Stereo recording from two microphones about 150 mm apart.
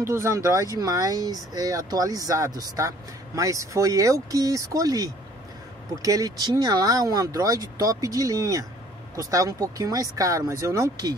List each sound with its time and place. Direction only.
0.0 s speech: 20° right (ahead or behind)